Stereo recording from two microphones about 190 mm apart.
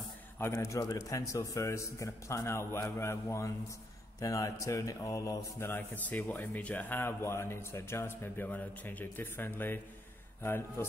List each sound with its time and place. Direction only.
0.4 s speech: 15° left (ahead or behind)